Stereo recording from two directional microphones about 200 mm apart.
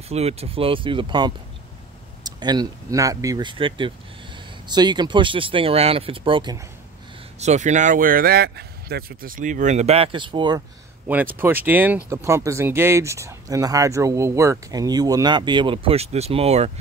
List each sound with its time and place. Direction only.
0.1 s speech: 30° right (ahead or behind)
7.3 s speech: 35° right (ahead or behind)
11.1 s speech: 10° right (ahead or behind); by 16.7 s 30° right (ahead or behind)